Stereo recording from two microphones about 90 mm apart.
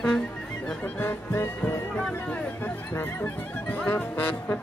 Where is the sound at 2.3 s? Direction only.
15° left (ahead or behind).